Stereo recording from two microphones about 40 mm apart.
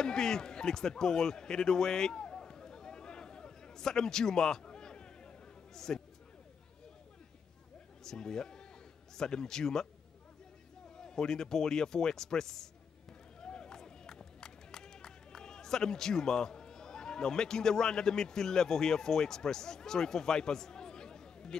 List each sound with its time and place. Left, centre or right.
0.0 s a sound: centre
5.8 s speech: centre
8.0 s a man's voice: centre
11.0 s speech: centre
13.4 s run: left